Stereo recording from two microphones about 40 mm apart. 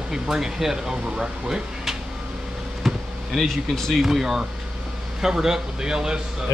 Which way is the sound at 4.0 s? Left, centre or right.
Centre.